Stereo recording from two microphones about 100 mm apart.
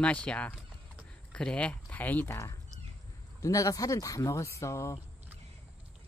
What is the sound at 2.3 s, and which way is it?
Speech, 30° left (ahead or behind).